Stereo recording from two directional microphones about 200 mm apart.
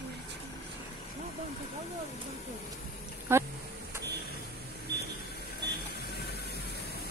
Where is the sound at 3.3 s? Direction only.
10° right (ahead or behind).